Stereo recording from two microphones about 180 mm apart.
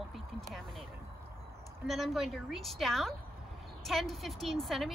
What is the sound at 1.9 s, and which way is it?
A woman's voice, centre (ahead or behind).